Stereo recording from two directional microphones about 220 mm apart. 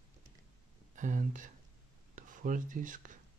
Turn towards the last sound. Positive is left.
turn(degrees=-35)  # may be behind; listen again after turning